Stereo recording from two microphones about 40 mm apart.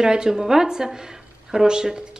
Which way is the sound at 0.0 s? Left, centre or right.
Centre.